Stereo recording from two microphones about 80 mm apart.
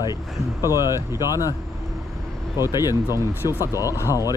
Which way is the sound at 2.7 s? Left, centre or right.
Left.